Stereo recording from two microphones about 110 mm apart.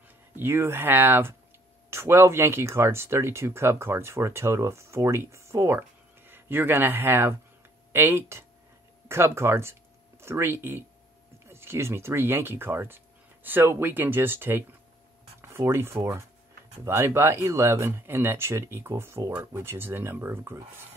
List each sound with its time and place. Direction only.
0.4 s speech: 20° right (ahead or behind)